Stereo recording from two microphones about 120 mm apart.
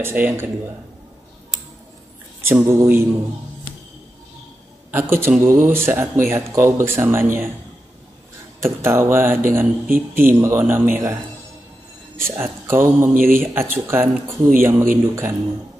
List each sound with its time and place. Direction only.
0.0 s speech: 15° right (ahead or behind)
2.4 s speech: 20° right (ahead or behind)
4.9 s speech: 20° right (ahead or behind)
8.5 s speech: 20° right (ahead or behind)
12.2 s speech: 20° right (ahead or behind)